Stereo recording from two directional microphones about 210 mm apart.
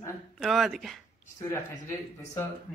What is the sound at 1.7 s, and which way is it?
Speech, 35° left (ahead or behind).